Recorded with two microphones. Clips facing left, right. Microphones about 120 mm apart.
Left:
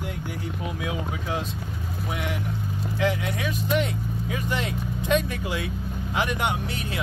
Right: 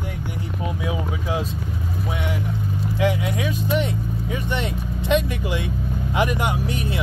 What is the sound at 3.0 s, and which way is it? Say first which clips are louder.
Vehicle: right 3 dB; 10° right (ahead or behind).